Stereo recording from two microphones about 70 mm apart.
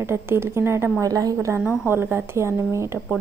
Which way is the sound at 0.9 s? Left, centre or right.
Right.